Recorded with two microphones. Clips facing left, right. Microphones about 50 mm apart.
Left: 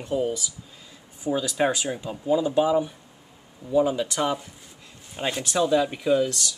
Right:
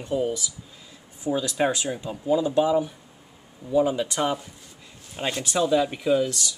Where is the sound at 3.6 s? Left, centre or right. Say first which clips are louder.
Even; centre.